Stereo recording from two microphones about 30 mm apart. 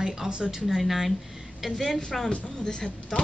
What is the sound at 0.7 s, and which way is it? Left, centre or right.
A woman's voice, centre.